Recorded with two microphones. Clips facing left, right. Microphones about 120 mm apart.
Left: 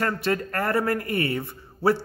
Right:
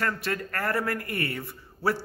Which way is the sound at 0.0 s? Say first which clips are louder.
Left 5 dB; 25° left (ahead or behind).